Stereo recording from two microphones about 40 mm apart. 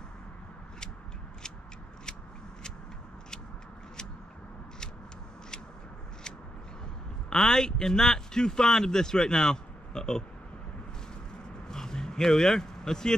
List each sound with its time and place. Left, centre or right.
7.2 s speech: centre
11.7 s vehicle: centre